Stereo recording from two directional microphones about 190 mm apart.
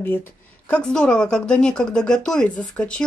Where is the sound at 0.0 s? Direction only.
10° left (ahead or behind).